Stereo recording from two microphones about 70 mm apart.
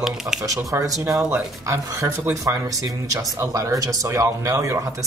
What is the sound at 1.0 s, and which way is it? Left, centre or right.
Speech, right.